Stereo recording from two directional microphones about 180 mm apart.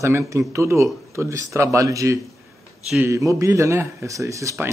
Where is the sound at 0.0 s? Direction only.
15° right (ahead or behind).